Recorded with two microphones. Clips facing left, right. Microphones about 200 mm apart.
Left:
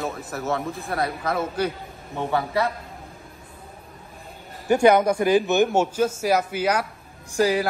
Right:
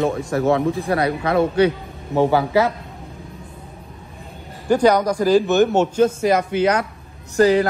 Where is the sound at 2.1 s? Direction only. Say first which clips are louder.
Right 10 dB; 85° right.